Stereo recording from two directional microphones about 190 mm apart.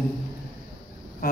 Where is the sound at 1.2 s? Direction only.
50° left (ahead or behind).